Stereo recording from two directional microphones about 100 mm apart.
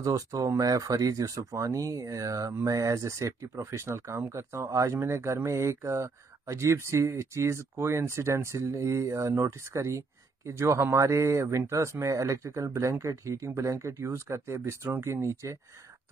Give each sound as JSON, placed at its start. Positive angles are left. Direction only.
{"t": 0.0, "sound": "speech", "side_deg": -35}